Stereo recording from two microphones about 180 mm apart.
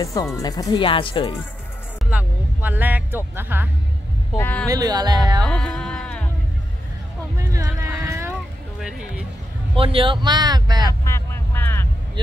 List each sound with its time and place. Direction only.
0.0 s speech: 20° left (ahead or behind)
2.0 s speech: 10° right (ahead or behind)
4.4 s speech: 10° left (ahead or behind)
4.6 s speech: 20° right (ahead or behind)
5.4 s music: 5° left (ahead or behind)
7.3 s a sound: 20° right (ahead or behind)
9.8 s speech: 30° right (ahead or behind)
11.1 s vehicle: 15° left (ahead or behind)